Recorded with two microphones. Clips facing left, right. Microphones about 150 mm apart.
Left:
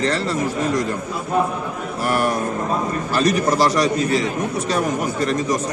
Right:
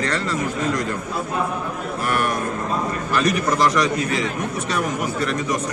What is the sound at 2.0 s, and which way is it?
A man's voice, 35° left (ahead or behind).